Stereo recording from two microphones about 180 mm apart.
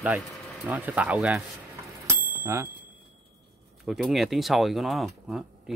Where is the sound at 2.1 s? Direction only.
15° right (ahead or behind).